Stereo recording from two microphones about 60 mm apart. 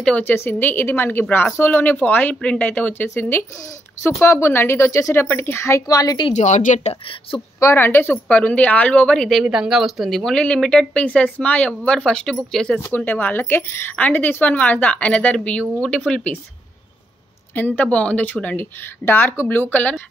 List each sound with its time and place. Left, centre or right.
0.2 s speech: left
3.2 s speech: left
5.9 s a woman's voice: left
7.7 s speech: left
8.3 s speech: left
9.4 s speech: centre
10.3 s speech: centre
11.1 s speech: left; by 12.7 s centre
12.9 s speech: left
13.9 s speech: left
17.6 s speech: left
19.0 s speech: left
19.7 s speech: left